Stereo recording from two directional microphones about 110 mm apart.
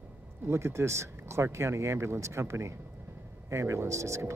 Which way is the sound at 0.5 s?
25° right (ahead or behind).